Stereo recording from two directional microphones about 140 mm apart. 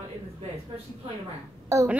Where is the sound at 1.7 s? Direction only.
20° right (ahead or behind).